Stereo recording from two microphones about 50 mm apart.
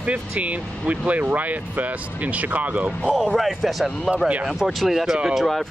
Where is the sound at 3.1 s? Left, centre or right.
Centre.